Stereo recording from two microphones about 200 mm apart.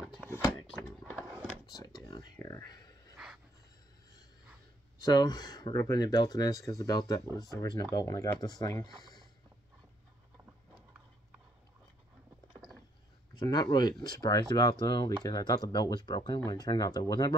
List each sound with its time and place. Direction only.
0.3 s a sound: 10° left (ahead or behind)
5.1 s speech: 20° left (ahead or behind)
13.3 s speech: 20° left (ahead or behind)